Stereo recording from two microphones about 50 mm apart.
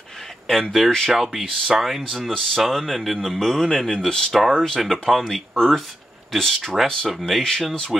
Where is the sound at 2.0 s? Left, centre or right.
Centre.